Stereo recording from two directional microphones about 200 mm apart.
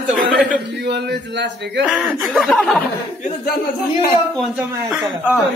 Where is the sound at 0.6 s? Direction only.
55° right (ahead or behind).